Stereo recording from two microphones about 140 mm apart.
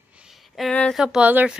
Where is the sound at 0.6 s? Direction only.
5° left (ahead or behind).